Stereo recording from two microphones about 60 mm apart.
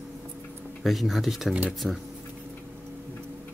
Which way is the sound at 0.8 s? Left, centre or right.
Centre.